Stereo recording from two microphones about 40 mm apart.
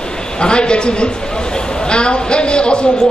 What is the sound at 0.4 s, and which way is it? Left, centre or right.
A man's voice, left.